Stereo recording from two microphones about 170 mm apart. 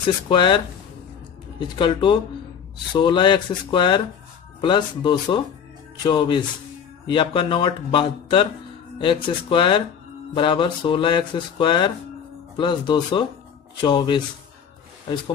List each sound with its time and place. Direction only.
0.3 s speech: 30° left (ahead or behind)
1.6 s speech: 30° left (ahead or behind)